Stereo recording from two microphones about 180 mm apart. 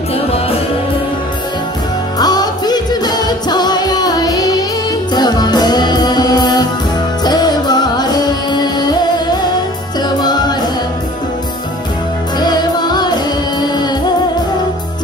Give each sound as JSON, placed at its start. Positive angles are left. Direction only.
{"t": 2.1, "sound": "music", "side_deg": 20}
{"t": 12.4, "sound": "music", "side_deg": 25}